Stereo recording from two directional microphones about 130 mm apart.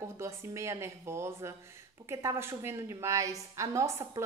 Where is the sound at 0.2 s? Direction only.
20° right (ahead or behind).